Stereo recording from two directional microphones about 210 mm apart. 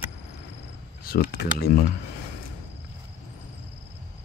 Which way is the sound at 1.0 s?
45° left (ahead or behind).